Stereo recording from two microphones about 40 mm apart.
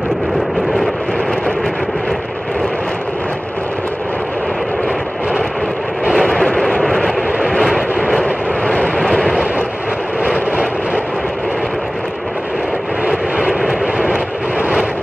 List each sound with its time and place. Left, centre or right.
6.1 s a sound: centre
6.8 s vehicle: centre
8.2 s vehicle: centre
8.9 s vehicle: centre
10.2 s vehicle: centre
13.1 s vehicle: centre